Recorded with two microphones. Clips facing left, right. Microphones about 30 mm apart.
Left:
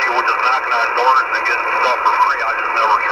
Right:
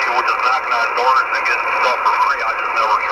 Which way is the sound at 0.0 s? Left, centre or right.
Centre.